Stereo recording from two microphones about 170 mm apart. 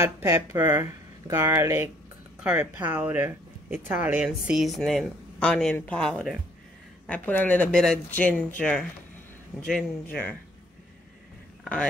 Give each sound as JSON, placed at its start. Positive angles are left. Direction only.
{"t": 0.0, "sound": "speech", "side_deg": -15}
{"t": 11.6, "sound": "speech", "side_deg": 5}